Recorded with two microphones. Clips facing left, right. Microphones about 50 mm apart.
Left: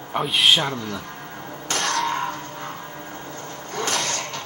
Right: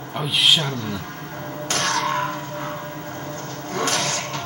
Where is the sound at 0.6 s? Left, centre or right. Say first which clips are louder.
Left 1 dB; left.